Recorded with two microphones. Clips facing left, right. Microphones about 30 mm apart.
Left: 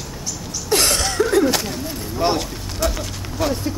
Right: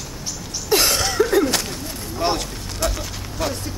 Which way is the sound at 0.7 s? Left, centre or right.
Centre.